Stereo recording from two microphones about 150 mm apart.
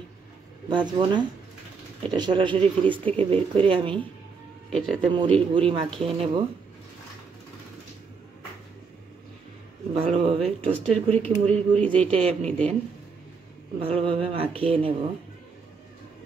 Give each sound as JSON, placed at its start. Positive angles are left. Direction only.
{"t": 0.7, "sound": "speech", "side_deg": -30}
{"t": 4.6, "sound": "speech", "side_deg": 0}
{"t": 5.1, "sound": "speech", "side_deg": -35}
{"t": 9.9, "sound": "speech", "side_deg": -40}
{"t": 11.7, "sound": "speech", "side_deg": 10}
{"t": 12.1, "sound": "speech", "side_deg": -40}
{"t": 12.4, "sound": "speech", "side_deg": 5}
{"t": 13.7, "sound": "speech", "side_deg": -40}